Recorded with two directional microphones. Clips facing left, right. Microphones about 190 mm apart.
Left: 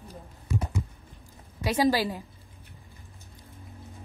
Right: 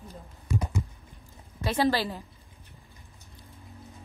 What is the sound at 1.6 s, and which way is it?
Speech, 15° left (ahead or behind).